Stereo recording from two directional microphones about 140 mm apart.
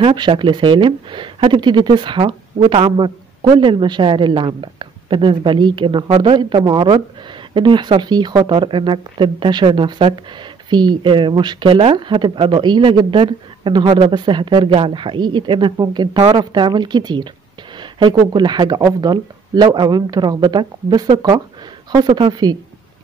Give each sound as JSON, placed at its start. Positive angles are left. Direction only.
{"t": 0.0, "sound": "speech", "side_deg": -35}